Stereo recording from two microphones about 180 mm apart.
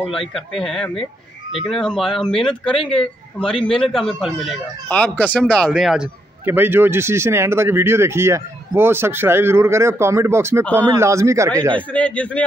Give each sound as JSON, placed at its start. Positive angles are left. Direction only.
{"t": 0.0, "sound": "speech", "side_deg": 0}
{"t": 5.4, "sound": "a man's voice", "side_deg": 0}
{"t": 10.6, "sound": "speech", "side_deg": 10}
{"t": 11.0, "sound": "a man's voice", "side_deg": -15}
{"t": 11.9, "sound": "speech", "side_deg": 5}